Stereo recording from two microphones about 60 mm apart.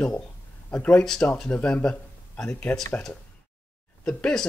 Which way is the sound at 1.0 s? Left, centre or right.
Centre.